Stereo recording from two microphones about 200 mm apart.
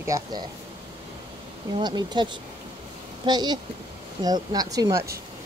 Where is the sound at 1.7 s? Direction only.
20° right (ahead or behind).